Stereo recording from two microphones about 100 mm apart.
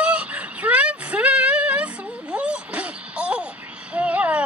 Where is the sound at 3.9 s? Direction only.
15° right (ahead or behind).